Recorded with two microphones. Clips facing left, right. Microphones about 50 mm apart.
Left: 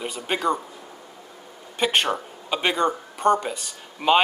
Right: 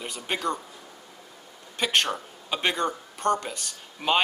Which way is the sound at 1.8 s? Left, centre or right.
Centre.